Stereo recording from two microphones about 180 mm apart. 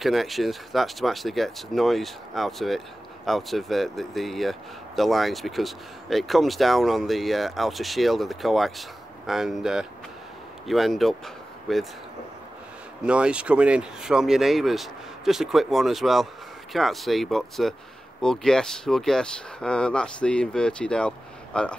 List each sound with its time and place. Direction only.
0.0 s speech: centre (ahead or behind)
13.0 s speech: 5° right (ahead or behind)